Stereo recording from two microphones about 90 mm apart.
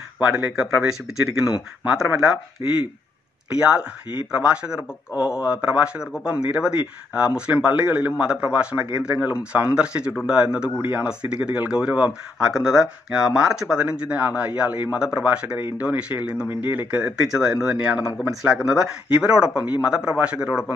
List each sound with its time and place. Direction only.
0.3 s speech: 20° right (ahead or behind)
0.6 s speech: 5° right (ahead or behind)
3.5 s speech: 10° right (ahead or behind)
17.3 s speech: 5° right (ahead or behind)